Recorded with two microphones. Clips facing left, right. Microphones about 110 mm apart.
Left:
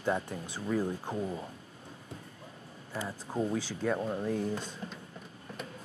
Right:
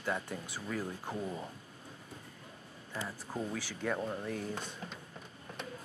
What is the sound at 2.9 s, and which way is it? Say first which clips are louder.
Speech: left 4 dB; 15° left (ahead or behind).